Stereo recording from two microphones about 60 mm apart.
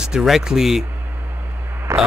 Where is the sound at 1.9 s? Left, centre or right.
Right.